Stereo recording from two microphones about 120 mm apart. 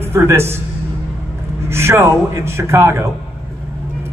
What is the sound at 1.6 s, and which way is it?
A man's voice, 20° right (ahead or behind).